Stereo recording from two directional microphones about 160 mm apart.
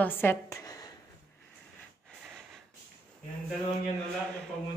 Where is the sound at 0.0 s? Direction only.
15° left (ahead or behind).